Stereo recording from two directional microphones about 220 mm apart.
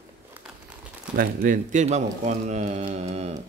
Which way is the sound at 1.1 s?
40° right (ahead or behind).